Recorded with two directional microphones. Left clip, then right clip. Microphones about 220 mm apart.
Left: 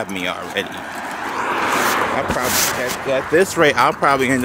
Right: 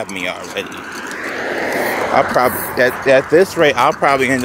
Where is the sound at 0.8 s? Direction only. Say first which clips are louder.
Right 1 dB; 15° left (ahead or behind).